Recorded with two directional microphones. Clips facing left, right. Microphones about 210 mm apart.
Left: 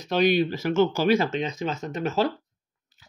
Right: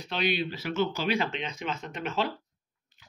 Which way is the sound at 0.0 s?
40° left (ahead or behind).